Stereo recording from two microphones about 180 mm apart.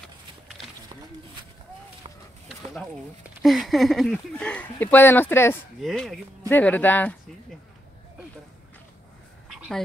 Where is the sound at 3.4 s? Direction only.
Centre (ahead or behind).